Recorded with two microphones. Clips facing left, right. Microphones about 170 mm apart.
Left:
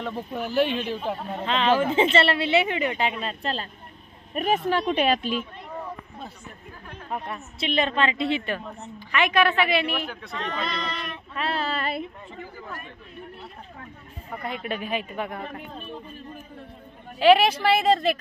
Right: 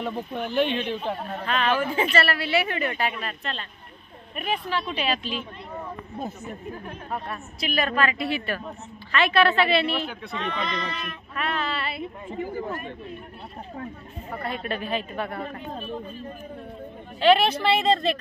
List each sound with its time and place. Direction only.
0.0 s speech: 5° left (ahead or behind)
1.4 s a woman's voice: 20° left (ahead or behind); by 5.4 s 50° left (ahead or behind)
7.1 s a woman's voice: 20° left (ahead or behind)
10.0 s speech: centre (ahead or behind)
11.3 s female singing: 35° left (ahead or behind)
14.4 s speech: 15° left (ahead or behind)
17.2 s speech: 10° left (ahead or behind)